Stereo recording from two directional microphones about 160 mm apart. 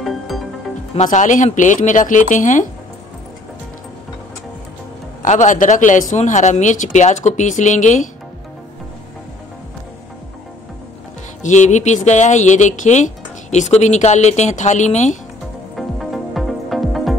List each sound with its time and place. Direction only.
0.9 s speech: 50° left (ahead or behind)
5.2 s speech: 50° left (ahead or behind)
11.4 s speech: 50° left (ahead or behind)
15.7 s music: centre (ahead or behind)